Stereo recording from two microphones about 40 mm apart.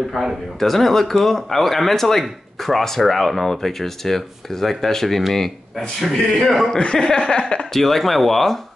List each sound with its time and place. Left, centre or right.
0.1 s a man's voice: centre
6.8 s a sound: left
7.7 s speech: centre